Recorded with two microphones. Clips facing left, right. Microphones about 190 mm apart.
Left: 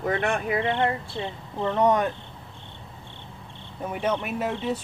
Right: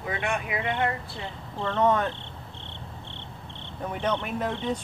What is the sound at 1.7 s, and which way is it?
Speech, 15° left (ahead or behind).